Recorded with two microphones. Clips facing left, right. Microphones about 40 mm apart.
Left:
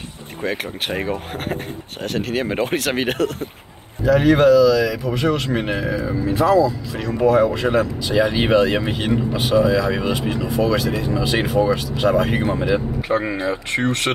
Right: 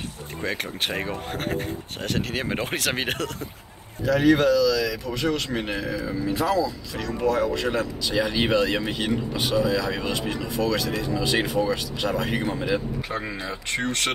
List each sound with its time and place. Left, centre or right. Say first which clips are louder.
0.4 s speech: left 4 dB; centre
4.0 s speech: left 5 dB; centre
13.2 s speech: left 9 dB; left